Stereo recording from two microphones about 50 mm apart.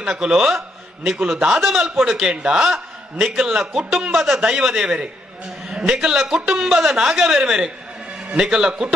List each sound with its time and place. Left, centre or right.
0.0 s a man's voice: centre